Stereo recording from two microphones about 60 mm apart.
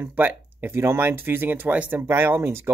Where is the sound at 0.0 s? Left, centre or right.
Right.